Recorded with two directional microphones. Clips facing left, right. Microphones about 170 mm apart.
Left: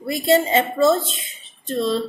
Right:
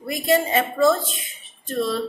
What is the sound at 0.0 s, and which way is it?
A woman's voice, 25° left (ahead or behind).